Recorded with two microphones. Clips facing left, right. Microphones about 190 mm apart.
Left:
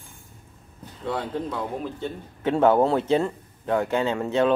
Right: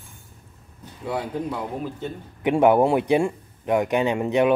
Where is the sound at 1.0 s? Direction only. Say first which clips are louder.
Right 1 dB; 10° right (ahead or behind).